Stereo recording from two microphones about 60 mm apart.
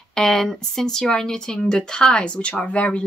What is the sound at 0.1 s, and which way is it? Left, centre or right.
A woman's voice, centre.